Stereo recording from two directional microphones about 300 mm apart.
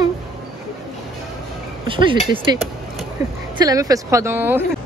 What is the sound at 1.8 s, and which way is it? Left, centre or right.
Speech, centre.